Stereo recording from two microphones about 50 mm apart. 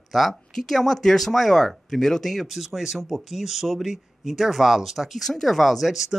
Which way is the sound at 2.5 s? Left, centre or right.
Centre.